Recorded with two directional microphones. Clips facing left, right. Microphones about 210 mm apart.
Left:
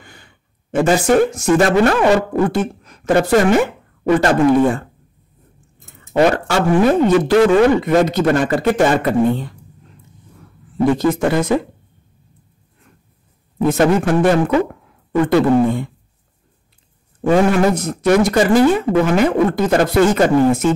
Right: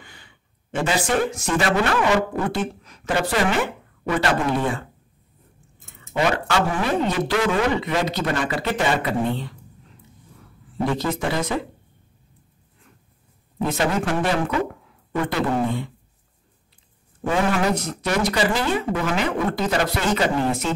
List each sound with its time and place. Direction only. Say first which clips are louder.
0.0 s a woman's voice: left 4 dB; 45° left (ahead or behind)
6.1 s speech: left 7 dB; 40° left (ahead or behind)
11.0 s speech: left 8 dB; 50° left (ahead or behind)
13.6 s speech: left 8 dB; 50° left (ahead or behind)
17.3 s speech: left 7 dB; 50° left (ahead or behind)